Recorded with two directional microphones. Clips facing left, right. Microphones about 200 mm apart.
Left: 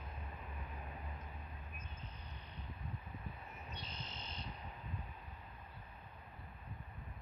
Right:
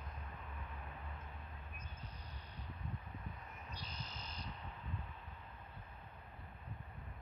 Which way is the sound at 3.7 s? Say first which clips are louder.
Even; 25° left (ahead or behind).